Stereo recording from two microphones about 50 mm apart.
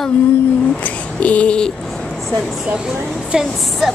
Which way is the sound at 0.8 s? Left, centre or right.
Left.